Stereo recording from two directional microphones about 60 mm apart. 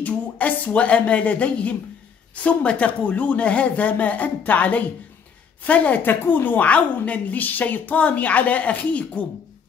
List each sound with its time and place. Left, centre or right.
0.0 s a woman's voice: left